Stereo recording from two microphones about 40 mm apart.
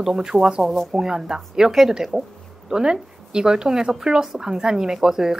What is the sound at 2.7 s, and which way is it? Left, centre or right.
Speech, centre.